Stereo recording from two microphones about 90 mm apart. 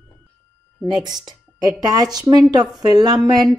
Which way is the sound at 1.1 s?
50° right (ahead or behind).